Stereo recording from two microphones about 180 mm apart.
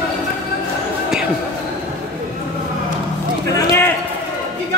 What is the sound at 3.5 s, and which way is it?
Basketball bounce, 15° left (ahead or behind).